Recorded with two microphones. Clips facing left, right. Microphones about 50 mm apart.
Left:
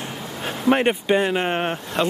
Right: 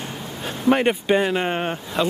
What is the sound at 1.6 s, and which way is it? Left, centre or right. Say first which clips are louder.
Speech: left 1 dB; left.